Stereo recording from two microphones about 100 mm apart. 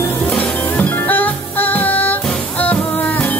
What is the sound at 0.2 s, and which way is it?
Music, 15° left (ahead or behind).